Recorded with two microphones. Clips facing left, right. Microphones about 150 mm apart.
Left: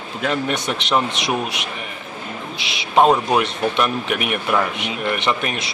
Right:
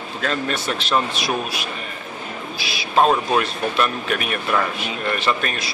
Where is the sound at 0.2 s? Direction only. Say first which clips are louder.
Left 2 dB; 15° left (ahead or behind).